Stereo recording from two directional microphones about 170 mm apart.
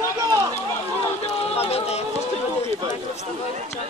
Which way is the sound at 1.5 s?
35° left (ahead or behind).